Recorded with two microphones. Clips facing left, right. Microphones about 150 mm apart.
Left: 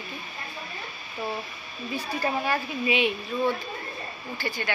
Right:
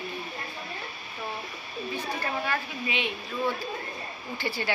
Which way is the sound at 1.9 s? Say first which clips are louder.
Left 4 dB; 10° left (ahead or behind).